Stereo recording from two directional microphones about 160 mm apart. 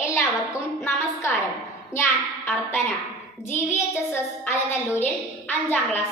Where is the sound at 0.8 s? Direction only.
15° left (ahead or behind).